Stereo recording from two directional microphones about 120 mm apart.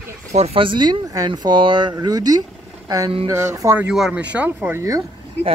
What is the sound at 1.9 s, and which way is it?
Speech, 30° right (ahead or behind).